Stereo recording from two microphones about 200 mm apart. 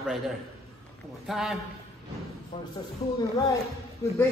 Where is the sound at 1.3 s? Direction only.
Centre (ahead or behind).